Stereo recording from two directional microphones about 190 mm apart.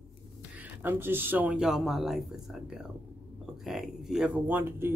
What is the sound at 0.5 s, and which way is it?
Speech, 10° right (ahead or behind).